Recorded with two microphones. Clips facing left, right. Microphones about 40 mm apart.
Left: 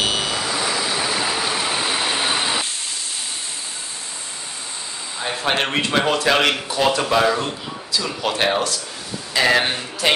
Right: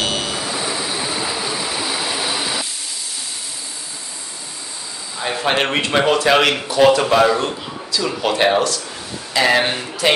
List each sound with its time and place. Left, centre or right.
0.0 s vehicle: centre
0.6 s vehicle: left
5.2 s a man's voice: centre